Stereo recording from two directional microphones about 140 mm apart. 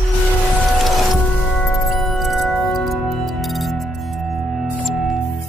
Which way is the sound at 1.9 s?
Centre (ahead or behind).